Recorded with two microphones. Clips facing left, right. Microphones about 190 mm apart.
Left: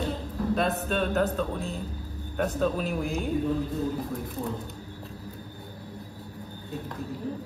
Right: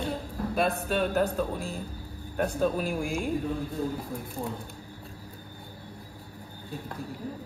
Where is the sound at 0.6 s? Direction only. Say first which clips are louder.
Right 3 dB; 5° right (ahead or behind).